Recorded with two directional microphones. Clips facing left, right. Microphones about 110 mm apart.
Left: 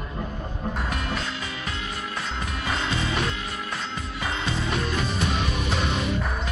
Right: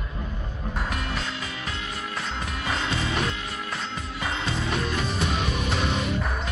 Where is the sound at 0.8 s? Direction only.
Centre (ahead or behind).